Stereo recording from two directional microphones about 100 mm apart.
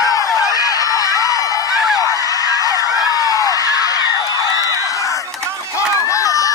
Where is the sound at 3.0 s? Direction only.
40° left (ahead or behind).